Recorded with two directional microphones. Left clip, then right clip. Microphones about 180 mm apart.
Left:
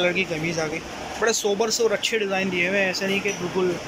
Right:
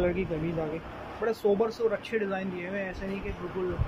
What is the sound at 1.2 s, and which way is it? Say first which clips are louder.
Speech: left 4 dB; 5° right (ahead or behind).